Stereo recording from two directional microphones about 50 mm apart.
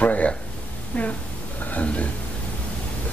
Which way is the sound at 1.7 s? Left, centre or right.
Left.